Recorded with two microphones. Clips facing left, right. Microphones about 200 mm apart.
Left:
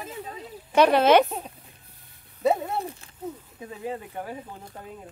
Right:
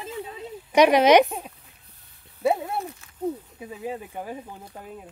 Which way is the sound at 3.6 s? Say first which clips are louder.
Left 2 dB; 10° right (ahead or behind).